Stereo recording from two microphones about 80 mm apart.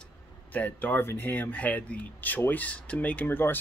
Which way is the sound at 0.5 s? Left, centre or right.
Left.